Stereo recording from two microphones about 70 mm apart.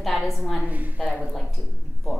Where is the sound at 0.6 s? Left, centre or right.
Right.